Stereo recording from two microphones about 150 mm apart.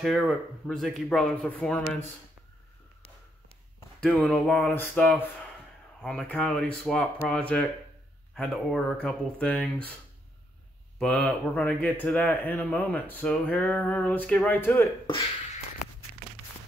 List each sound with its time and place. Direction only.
0.0 s speech: centre (ahead or behind)
4.0 s a man's voice: 10° left (ahead or behind)
11.0 s a man's voice: 5° left (ahead or behind)